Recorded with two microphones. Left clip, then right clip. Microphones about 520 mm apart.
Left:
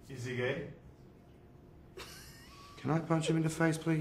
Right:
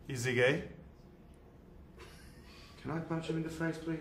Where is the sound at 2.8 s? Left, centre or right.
Left.